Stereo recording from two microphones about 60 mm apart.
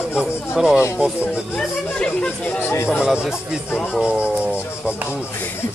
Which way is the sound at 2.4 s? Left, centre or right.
Left.